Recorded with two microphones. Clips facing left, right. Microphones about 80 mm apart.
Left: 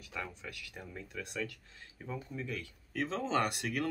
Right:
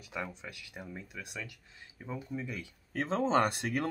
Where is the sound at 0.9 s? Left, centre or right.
Centre.